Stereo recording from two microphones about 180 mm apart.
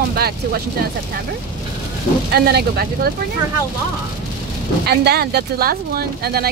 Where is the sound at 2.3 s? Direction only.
65° right (ahead or behind).